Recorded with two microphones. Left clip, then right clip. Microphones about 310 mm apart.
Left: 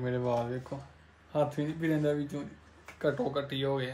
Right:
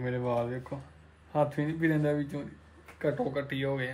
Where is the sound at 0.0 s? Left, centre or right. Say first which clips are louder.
Even; centre.